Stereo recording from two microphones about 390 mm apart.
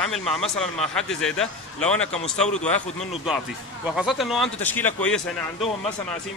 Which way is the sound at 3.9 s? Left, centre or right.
Centre.